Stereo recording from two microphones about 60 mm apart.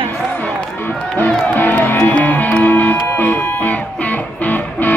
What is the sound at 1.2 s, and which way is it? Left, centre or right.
Music, left.